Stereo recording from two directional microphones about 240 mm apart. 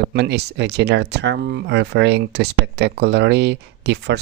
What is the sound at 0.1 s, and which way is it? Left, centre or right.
Speech, right.